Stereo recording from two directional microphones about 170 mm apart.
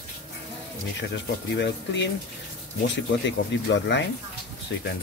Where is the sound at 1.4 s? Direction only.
90° left.